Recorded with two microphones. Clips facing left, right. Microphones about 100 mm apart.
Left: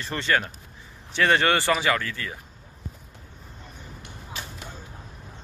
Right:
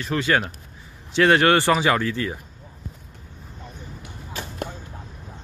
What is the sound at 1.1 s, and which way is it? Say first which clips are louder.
Speech: right 5 dB; 15° right (ahead or behind).